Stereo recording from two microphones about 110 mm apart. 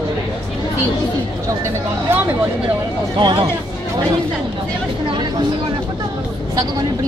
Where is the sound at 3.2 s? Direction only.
50° right (ahead or behind).